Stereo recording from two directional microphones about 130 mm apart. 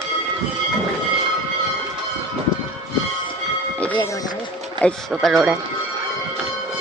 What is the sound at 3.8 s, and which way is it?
Music, 10° left (ahead or behind).